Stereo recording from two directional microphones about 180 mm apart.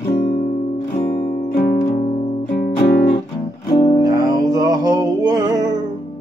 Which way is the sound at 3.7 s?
35° left (ahead or behind).